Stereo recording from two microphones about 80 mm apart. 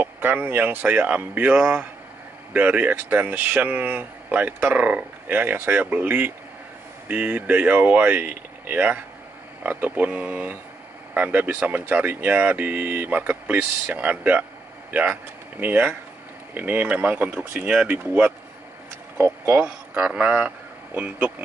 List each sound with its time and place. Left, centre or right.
0.0 s speech: right
19.1 s speech: right